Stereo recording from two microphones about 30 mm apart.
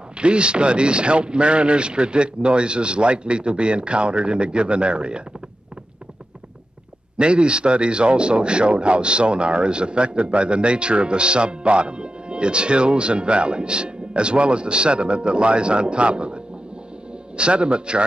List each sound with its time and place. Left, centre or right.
0.2 s a man's voice: right
7.2 s a man's voice: right